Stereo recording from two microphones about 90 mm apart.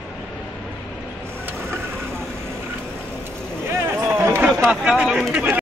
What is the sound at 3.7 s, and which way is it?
Vehicle, 30° right (ahead or behind).